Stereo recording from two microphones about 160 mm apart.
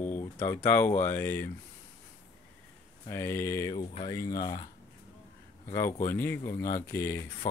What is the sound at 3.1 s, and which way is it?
Speech, 15° left (ahead or behind).